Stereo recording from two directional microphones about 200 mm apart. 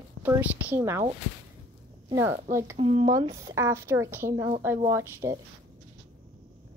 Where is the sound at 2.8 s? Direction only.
30° right (ahead or behind).